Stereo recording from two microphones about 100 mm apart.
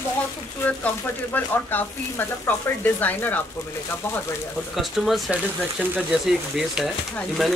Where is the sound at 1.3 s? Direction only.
20° left (ahead or behind).